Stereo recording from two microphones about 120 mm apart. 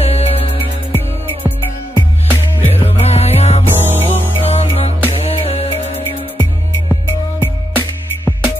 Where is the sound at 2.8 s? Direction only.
60° left (ahead or behind).